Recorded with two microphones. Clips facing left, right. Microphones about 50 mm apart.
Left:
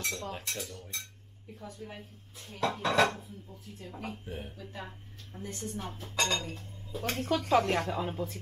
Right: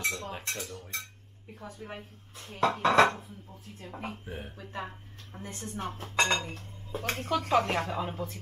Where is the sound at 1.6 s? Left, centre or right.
Right.